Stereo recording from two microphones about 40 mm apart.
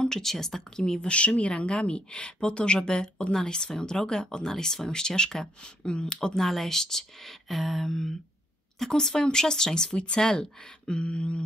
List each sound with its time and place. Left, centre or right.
0.1 s speech: centre
1.1 s speech: left; by 10.5 s centre
10.9 s speech: left